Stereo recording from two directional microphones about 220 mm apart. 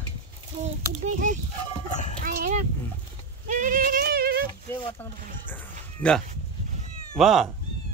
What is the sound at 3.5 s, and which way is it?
Goat, 35° right (ahead or behind).